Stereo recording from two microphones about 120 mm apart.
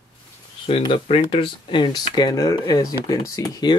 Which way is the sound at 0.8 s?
50° left (ahead or behind).